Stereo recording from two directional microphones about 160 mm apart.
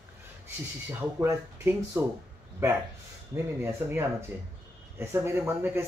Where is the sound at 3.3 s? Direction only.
15° right (ahead or behind).